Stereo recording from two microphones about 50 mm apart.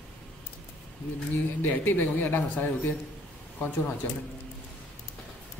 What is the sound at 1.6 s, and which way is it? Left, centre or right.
A man's voice, left.